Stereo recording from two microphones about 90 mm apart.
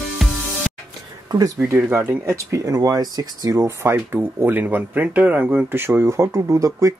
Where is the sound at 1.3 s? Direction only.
45° right (ahead or behind).